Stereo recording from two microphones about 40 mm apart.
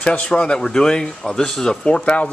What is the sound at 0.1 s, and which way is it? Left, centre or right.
Speech, left.